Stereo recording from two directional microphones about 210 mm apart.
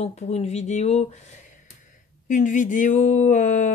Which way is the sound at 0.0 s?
30° left (ahead or behind).